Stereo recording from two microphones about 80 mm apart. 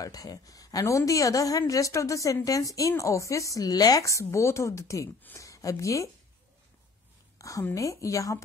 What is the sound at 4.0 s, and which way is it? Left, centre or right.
A woman's voice, left.